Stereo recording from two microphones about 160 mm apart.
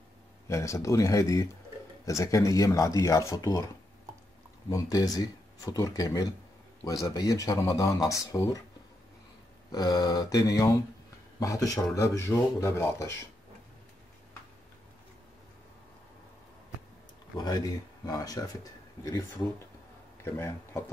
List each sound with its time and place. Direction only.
0.5 s speech: 20° left (ahead or behind)
9.7 s speech: 25° left (ahead or behind)
17.4 s speech: 25° left (ahead or behind)
20.3 s speech: 15° left (ahead or behind)